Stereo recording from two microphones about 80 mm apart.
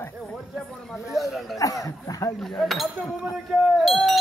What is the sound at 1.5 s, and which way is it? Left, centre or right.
Speech, left.